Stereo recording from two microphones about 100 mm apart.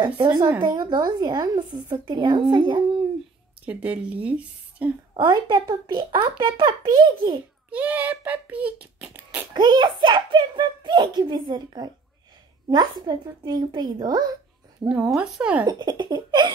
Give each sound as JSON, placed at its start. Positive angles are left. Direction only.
{"t": 0.0, "sound": "a child's voice", "side_deg": -45}
{"t": 3.6, "sound": "speech", "side_deg": -15}
{"t": 5.3, "sound": "a child's voice", "side_deg": -45}
{"t": 7.7, "sound": "a child's voice", "side_deg": -15}
{"t": 9.5, "sound": "a child's voice", "side_deg": -45}
{"t": 15.0, "sound": "speech", "side_deg": -5}
{"t": 15.6, "sound": "a child's voice", "side_deg": -45}